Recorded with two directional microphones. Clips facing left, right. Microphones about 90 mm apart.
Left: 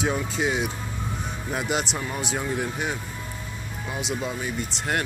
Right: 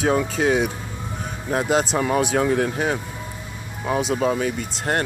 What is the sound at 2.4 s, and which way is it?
Speech, 80° right.